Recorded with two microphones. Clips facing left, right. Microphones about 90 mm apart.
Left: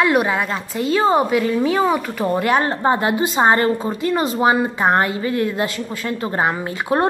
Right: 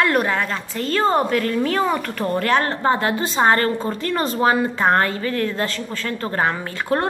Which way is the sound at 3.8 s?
10° left (ahead or behind).